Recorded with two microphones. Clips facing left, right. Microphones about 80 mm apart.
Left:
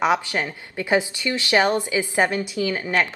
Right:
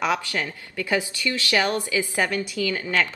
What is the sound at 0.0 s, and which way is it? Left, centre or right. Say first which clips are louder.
Speech: left 4 dB; left.